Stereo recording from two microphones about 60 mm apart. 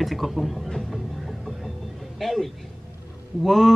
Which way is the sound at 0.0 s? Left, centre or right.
Centre.